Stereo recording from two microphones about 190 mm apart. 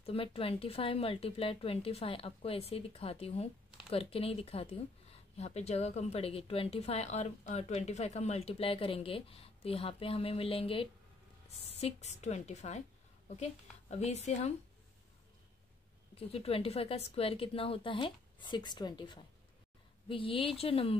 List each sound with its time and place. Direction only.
0.0 s speech: 30° left (ahead or behind)
16.2 s a woman's voice: 30° left (ahead or behind)